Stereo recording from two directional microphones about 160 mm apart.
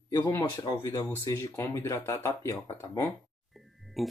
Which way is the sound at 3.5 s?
Centre (ahead or behind).